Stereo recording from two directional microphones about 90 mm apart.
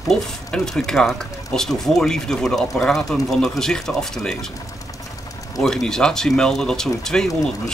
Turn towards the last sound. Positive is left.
turn(degrees=5)  # may be behind; listen again after turning